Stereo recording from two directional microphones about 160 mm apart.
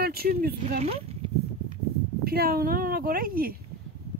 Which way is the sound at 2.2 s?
70° right (ahead or behind).